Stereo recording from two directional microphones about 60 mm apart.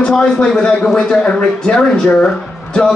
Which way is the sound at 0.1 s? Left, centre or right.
Centre.